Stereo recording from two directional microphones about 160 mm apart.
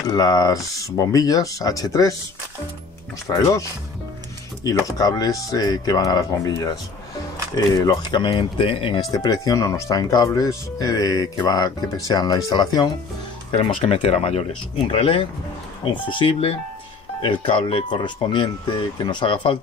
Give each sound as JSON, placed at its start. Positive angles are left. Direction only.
{"t": 0.0, "sound": "speech", "side_deg": 25}
{"t": 3.3, "sound": "speech", "side_deg": 20}
{"t": 4.6, "sound": "speech", "side_deg": 20}
{"t": 13.5, "sound": "speech", "side_deg": 40}